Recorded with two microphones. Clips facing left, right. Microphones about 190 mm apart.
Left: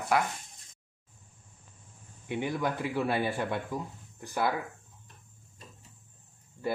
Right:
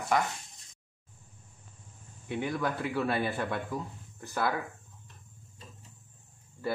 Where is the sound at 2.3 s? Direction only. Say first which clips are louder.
Left 1 dB; 15° left (ahead or behind).